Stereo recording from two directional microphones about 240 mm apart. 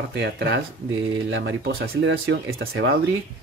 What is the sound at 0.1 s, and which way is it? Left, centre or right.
Speech, right.